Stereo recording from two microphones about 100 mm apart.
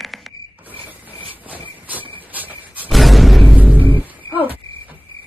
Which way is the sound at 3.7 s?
15° left (ahead or behind).